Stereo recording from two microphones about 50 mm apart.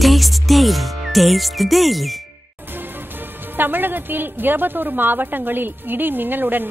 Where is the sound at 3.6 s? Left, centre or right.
Right.